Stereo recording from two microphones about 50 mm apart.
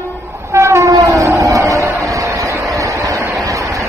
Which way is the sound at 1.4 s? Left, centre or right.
Right.